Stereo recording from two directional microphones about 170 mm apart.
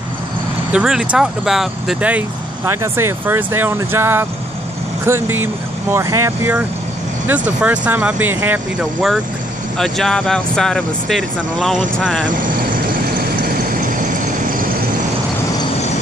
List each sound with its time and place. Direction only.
0.7 s speech: 5° right (ahead or behind)
12.3 s speech: 50° right (ahead or behind)
13.4 s vehicle: 55° right (ahead or behind)